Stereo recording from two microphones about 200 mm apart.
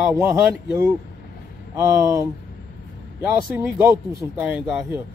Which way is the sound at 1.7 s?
15° right (ahead or behind).